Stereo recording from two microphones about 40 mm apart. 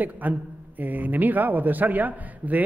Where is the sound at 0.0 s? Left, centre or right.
Right.